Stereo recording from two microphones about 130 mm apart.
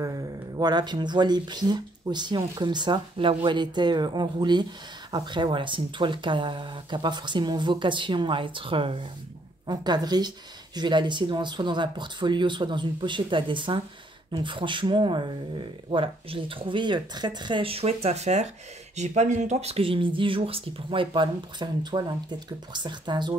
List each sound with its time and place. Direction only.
0.0 s speech: 30° right (ahead or behind)